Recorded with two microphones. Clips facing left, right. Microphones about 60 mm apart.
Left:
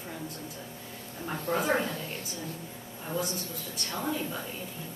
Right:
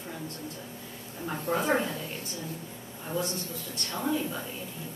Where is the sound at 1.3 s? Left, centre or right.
Centre.